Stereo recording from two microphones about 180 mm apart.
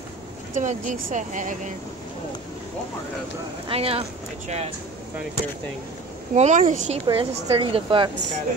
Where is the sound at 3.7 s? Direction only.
30° right (ahead or behind).